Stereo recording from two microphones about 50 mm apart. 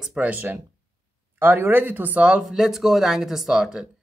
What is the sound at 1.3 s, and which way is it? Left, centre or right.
Speech, right.